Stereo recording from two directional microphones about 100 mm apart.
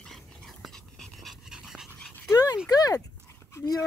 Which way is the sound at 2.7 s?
40° left (ahead or behind).